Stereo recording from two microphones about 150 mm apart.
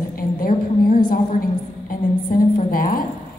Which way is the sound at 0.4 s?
75° left (ahead or behind).